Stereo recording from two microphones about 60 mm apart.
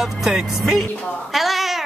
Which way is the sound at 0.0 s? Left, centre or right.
Centre.